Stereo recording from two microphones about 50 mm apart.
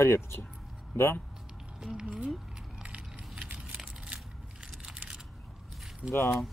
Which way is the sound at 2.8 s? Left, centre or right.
Right.